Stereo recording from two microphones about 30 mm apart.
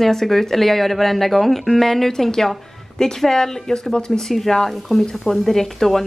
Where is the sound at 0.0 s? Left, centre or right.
Centre.